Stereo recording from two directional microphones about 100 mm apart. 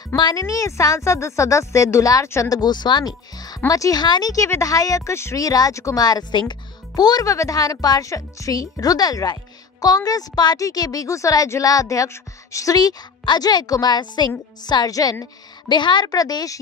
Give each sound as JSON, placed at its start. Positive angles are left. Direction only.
{"t": 0.1, "sound": "a woman's voice", "side_deg": 45}
{"t": 15.7, "sound": "a woman's voice", "side_deg": 50}